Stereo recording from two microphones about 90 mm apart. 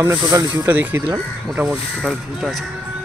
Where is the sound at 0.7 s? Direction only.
20° right (ahead or behind).